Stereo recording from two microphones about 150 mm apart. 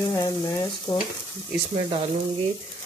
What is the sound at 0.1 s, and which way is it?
Frying, 25° left (ahead or behind).